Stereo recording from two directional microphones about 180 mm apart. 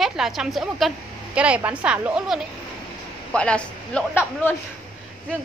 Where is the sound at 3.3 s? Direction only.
5° left (ahead or behind).